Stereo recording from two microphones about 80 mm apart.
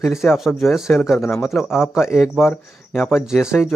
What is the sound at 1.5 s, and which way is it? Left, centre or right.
A man's voice, centre.